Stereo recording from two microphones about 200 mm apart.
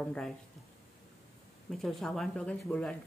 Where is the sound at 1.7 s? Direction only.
Centre (ahead or behind).